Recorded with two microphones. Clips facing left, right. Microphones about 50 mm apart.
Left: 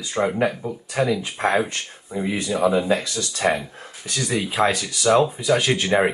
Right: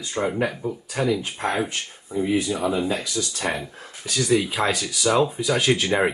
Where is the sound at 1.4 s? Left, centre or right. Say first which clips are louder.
Left 4 dB; left.